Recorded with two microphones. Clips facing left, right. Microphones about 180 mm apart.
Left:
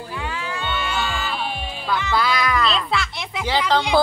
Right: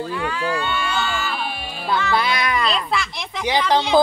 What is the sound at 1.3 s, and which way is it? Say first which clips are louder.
Music: even; 5° right (ahead or behind).